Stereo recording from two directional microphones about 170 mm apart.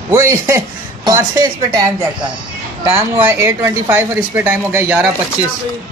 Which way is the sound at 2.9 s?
10° right (ahead or behind).